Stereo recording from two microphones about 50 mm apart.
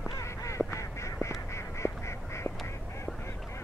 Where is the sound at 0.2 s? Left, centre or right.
Left.